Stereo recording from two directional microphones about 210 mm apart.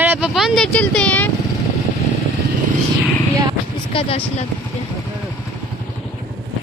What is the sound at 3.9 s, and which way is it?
Speech, 30° left (ahead or behind).